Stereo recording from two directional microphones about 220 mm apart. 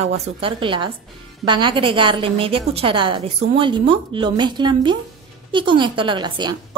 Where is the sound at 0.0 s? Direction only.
25° right (ahead or behind).